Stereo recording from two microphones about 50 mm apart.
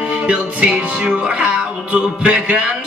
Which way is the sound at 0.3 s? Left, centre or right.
Right.